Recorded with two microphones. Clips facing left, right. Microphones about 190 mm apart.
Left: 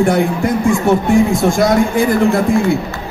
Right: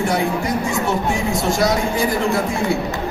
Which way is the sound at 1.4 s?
55° left (ahead or behind).